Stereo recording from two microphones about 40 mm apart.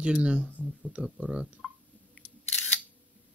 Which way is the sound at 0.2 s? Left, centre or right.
Right.